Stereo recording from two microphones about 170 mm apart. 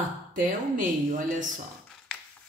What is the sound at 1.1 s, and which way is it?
Speech, 50° right (ahead or behind).